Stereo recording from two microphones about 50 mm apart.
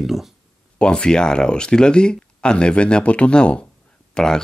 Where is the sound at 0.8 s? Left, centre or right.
Centre.